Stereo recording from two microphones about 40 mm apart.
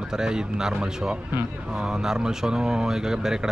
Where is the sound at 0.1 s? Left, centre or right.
Centre.